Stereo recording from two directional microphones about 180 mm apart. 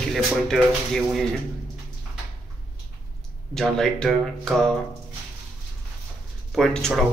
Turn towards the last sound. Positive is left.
turn(degrees=0)  # may be behind; listen again after turning